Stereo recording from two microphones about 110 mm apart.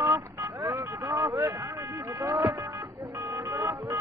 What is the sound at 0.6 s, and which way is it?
Vehicle, 40° right (ahead or behind).